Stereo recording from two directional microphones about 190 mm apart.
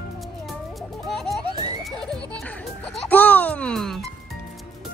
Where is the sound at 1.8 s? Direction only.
Centre (ahead or behind).